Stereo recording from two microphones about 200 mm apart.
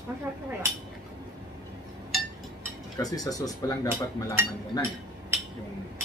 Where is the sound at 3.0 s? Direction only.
15° left (ahead or behind).